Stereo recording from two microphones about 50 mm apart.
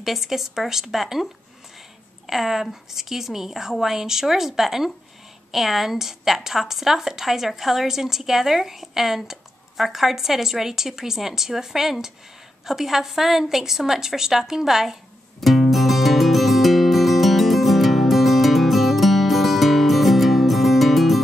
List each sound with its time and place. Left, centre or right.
0.0 s a woman's voice: centre
15.4 s music: centre